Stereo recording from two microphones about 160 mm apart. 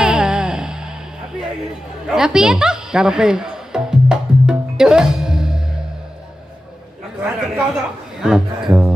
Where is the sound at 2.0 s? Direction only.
5° right (ahead or behind).